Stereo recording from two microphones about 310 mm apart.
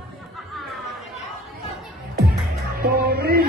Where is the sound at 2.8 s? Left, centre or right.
Right.